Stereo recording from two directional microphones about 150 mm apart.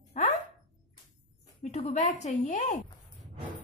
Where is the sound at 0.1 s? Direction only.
50° left (ahead or behind).